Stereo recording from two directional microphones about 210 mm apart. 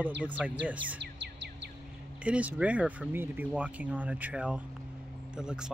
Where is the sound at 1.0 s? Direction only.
55° right (ahead or behind).